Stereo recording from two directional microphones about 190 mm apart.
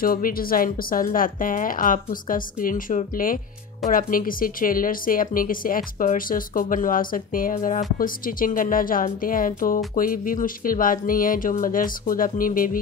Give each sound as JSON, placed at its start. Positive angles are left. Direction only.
{"t": 0.0, "sound": "a woman's voice", "side_deg": 50}